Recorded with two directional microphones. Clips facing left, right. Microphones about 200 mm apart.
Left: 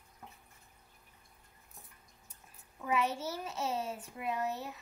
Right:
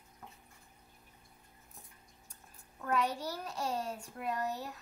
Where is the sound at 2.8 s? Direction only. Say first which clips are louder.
Even; 5° left (ahead or behind).